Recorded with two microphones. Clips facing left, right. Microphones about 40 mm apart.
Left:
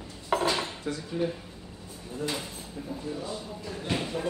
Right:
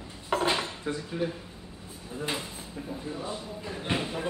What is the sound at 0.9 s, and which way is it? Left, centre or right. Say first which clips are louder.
Speech: right 2 dB; centre.